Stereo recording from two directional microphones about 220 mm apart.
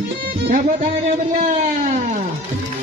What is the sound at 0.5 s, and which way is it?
Speech, 35° right (ahead or behind).